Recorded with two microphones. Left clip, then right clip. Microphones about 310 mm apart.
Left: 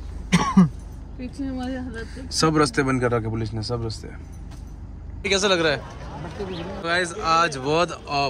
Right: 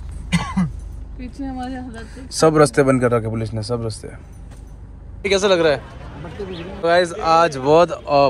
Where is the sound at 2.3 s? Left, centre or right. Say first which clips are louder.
Right 7 dB; centre.